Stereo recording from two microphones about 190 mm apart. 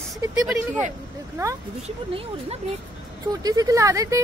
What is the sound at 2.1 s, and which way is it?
Speech, 30° right (ahead or behind).